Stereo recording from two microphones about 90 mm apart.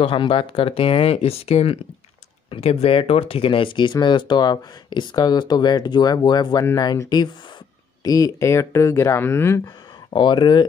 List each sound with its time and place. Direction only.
0.0 s speech: 80° left; by 9.6 s 25° left (ahead or behind)
10.1 s speech: 60° left (ahead or behind)